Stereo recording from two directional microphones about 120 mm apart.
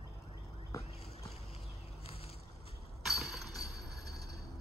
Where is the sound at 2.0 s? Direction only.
55° left (ahead or behind).